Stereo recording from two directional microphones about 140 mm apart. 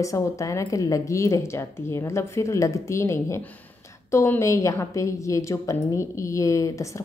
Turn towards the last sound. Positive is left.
turn(degrees=20)  # may be behind; listen again after turning